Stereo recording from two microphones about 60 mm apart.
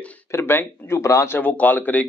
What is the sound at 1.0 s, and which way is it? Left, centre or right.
Speech, left.